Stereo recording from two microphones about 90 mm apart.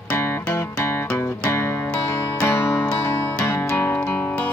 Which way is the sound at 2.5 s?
25° left (ahead or behind).